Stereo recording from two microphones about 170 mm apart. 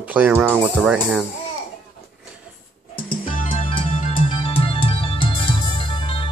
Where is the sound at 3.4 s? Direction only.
35° left (ahead or behind).